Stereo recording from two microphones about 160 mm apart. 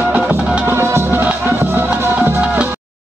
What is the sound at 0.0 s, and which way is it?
Music, 15° right (ahead or behind).